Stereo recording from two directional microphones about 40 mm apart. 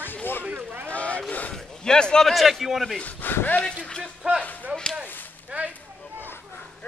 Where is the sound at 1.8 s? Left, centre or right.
Centre.